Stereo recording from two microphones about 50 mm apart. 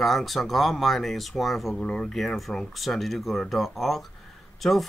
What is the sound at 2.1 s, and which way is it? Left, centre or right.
Speech, centre.